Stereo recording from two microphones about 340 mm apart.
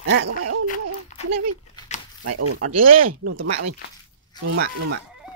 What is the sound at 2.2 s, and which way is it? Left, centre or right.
Speech, right.